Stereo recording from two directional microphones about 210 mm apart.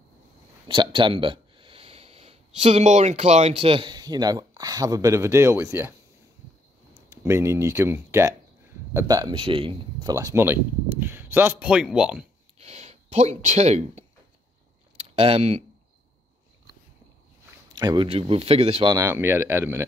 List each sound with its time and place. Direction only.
0.7 s speech: 25° right (ahead or behind)
7.1 s speech: 15° right (ahead or behind)
12.5 s speech: 30° right (ahead or behind)
15.1 s speech: 25° right (ahead or behind)
17.7 s speech: 20° right (ahead or behind)